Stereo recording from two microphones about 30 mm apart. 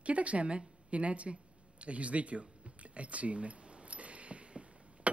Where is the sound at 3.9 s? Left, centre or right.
Right.